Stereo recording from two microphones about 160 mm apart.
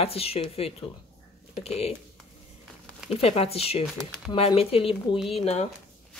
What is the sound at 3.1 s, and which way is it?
Speech, 40° left (ahead or behind).